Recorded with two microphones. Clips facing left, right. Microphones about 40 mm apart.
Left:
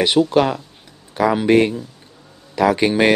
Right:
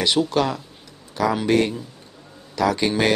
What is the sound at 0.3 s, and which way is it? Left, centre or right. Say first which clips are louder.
A man's voice: left 5 dB; left.